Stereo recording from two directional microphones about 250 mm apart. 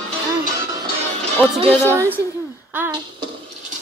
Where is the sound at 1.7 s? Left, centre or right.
Centre.